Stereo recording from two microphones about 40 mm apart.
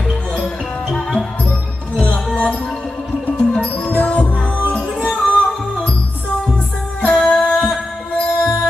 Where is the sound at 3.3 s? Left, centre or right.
Left.